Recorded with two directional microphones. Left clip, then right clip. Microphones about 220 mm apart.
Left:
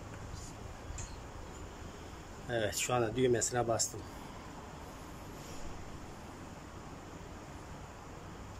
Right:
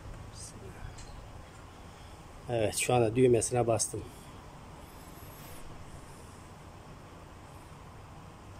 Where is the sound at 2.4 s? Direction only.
10° right (ahead or behind).